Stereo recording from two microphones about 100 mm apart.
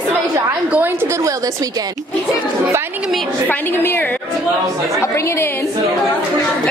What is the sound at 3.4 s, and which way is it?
Speech, 20° left (ahead or behind).